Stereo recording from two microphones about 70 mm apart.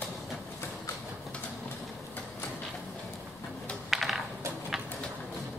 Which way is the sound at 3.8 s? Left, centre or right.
Centre.